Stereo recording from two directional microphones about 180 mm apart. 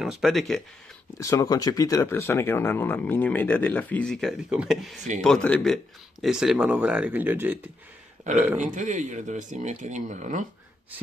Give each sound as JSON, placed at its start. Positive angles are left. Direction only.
{"t": 0.0, "sound": "speech", "side_deg": 0}
{"t": 1.2, "sound": "speech", "side_deg": 20}
{"t": 8.5, "sound": "speech", "side_deg": -45}